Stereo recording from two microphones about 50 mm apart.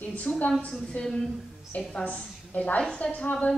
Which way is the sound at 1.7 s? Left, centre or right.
Left.